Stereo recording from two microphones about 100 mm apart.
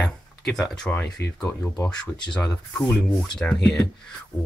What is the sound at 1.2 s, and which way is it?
Speech, 25° left (ahead or behind).